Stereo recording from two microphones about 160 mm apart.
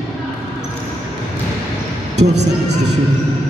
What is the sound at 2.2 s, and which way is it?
Speech, 90° right.